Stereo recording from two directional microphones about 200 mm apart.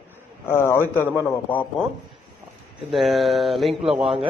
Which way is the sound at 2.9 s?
Centre (ahead or behind).